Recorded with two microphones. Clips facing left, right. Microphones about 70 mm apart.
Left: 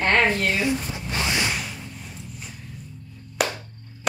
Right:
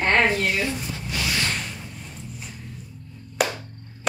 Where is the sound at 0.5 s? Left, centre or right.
Centre.